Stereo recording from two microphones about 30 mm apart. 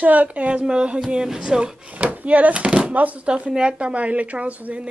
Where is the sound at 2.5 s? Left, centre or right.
Right.